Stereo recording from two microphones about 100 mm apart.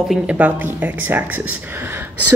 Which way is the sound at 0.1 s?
15° right (ahead or behind).